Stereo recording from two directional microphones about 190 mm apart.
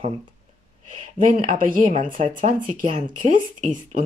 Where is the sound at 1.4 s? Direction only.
45° right (ahead or behind).